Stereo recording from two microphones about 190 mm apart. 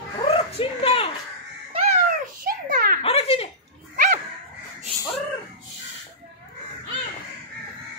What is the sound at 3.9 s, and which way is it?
Dog, 45° right (ahead or behind).